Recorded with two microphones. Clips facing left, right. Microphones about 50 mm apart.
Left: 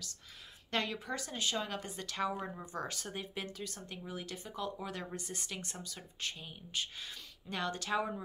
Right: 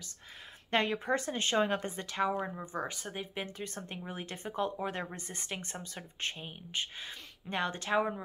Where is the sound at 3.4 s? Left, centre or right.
Right.